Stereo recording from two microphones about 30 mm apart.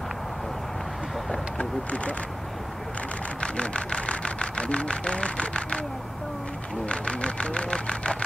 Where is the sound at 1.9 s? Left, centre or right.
Left.